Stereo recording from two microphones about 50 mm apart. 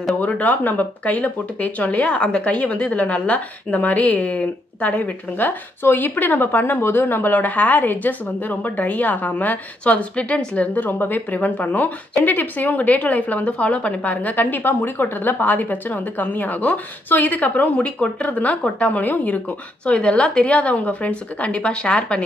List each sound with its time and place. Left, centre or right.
0.2 s speech: left
19.8 s a woman's voice: left